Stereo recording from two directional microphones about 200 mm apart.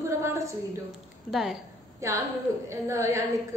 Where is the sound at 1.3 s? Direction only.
Centre (ahead or behind).